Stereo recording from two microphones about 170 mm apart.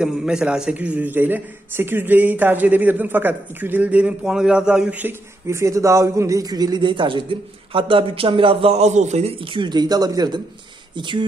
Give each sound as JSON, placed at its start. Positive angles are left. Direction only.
{"t": 0.0, "sound": "a man's voice", "side_deg": -5}